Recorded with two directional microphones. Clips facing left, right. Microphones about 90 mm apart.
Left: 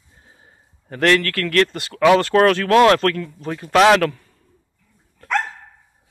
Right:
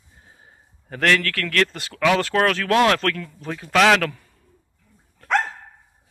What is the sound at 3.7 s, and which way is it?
Speech, 15° left (ahead or behind).